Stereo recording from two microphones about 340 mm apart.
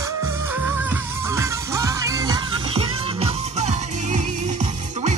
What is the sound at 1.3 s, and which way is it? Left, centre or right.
Music, centre.